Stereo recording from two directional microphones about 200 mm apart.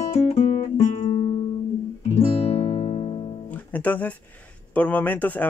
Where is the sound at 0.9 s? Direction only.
30° left (ahead or behind).